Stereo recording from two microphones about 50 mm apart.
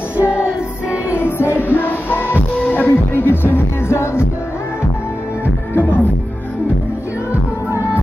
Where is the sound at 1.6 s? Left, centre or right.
Left.